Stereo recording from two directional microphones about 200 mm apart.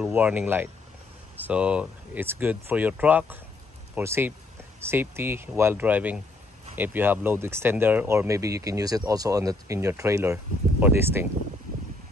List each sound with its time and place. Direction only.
0.0 s speech: 10° right (ahead or behind)